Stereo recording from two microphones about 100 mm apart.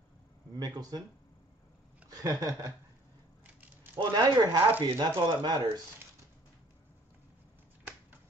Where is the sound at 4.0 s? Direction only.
40° right (ahead or behind).